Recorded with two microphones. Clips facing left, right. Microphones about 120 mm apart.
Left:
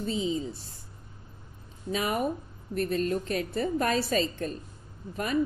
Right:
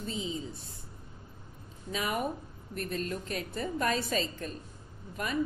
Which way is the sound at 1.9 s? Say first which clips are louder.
Left 4 dB; 40° left (ahead or behind).